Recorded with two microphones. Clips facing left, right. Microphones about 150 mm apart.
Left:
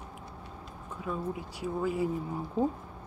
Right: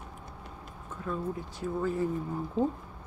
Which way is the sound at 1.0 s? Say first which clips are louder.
Right 1 dB; 10° left (ahead or behind).